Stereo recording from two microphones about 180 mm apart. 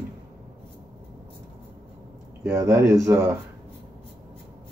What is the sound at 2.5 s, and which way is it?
Speech, 15° right (ahead or behind).